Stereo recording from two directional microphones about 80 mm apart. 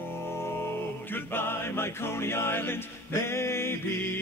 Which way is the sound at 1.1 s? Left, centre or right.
Left.